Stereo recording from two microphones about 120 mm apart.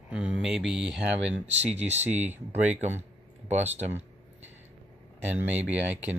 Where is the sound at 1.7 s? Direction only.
65° right (ahead or behind).